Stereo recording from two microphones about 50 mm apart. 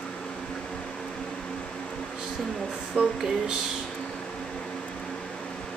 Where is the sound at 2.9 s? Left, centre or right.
Centre.